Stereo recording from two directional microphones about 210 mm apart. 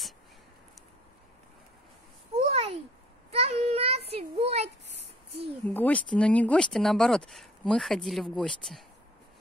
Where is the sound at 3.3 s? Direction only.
30° right (ahead or behind).